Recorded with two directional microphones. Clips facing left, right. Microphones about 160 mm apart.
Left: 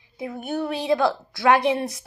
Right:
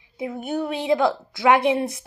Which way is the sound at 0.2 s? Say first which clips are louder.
Right 1 dB; 15° right (ahead or behind).